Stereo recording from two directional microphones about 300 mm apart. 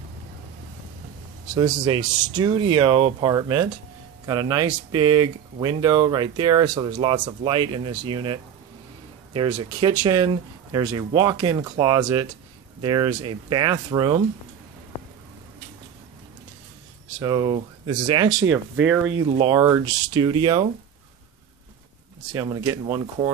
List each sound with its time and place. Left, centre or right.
1.5 s speech: centre
17.2 s speech: centre
22.3 s speech: centre